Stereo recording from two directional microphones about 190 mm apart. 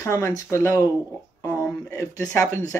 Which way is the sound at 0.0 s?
15° left (ahead or behind).